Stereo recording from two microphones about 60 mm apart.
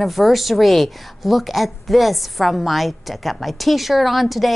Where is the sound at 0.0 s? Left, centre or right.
Centre.